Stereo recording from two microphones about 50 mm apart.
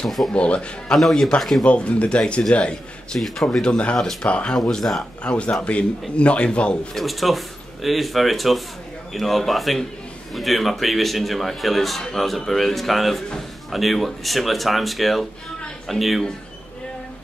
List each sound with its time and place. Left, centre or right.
0.3 s speech: left
0.9 s speech: centre
1.6 s speech: left
3.1 s speech: centre
3.6 s speech: left
4.5 s speech: centre
5.2 s speech: left
6.9 s speech: centre